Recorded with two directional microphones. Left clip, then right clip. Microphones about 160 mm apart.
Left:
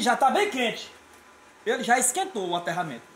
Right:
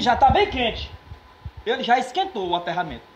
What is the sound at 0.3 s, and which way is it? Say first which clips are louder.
A woman's voice: right 4 dB; 30° left (ahead or behind).